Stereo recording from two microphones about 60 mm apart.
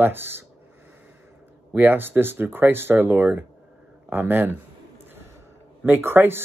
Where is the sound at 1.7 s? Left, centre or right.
Right.